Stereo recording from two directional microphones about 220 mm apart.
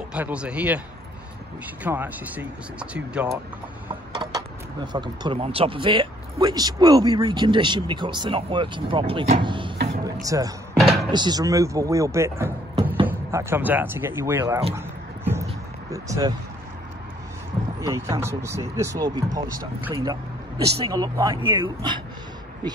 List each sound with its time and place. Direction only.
0.1 s speech: 5° right (ahead or behind)
1.8 s speech: 10° right (ahead or behind)
4.1 s a sound: 20° right (ahead or behind)
4.9 s speech: 20° right (ahead or behind)
10.0 s a sound: 15° right (ahead or behind)
10.8 s door: centre (ahead or behind)
11.1 s speech: 20° right (ahead or behind)
14.7 s a sound: 10° right (ahead or behind)
17.7 s speech: 15° right (ahead or behind)